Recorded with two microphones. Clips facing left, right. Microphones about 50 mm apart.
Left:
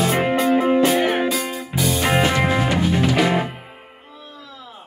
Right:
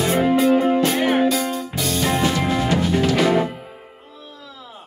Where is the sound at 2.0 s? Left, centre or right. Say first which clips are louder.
Left 2 dB; left.